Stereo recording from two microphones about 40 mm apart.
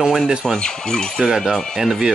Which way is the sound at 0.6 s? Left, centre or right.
Centre.